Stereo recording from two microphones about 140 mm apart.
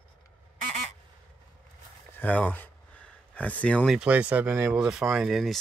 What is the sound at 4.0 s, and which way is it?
Speech, 10° right (ahead or behind).